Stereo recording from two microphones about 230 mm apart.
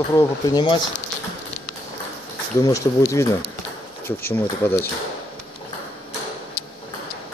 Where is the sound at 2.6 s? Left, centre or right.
Centre.